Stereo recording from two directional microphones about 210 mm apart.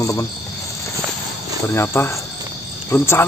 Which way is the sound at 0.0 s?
15° left (ahead or behind).